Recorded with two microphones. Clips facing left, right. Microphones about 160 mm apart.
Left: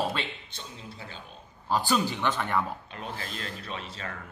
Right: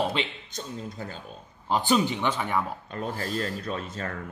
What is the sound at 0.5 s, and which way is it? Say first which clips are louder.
Speech: right 8 dB; 45° right (ahead or behind).